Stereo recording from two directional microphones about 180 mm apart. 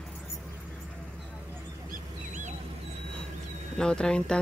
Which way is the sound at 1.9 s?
45° right (ahead or behind).